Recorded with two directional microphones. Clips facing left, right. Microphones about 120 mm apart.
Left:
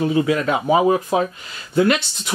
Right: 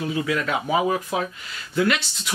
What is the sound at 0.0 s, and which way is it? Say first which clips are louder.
Speech: left 6 dB; 30° left (ahead or behind).